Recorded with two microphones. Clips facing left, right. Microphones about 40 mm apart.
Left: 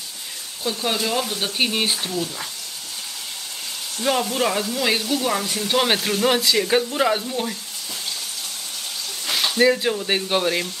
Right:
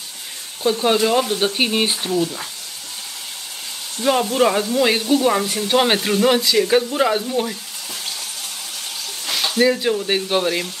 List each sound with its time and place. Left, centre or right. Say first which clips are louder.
0.8 s speech: right 6 dB; centre
4.0 s speech: right 5 dB; centre
9.2 s a sound: even; centre
9.6 s speech: right 1 dB; centre